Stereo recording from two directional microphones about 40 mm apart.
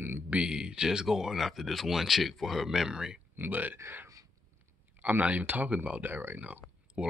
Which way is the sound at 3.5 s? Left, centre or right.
Right.